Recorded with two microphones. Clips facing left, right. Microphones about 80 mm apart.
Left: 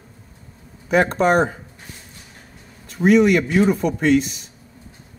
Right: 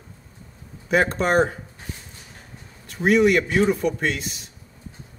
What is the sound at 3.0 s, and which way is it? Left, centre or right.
Speech, centre.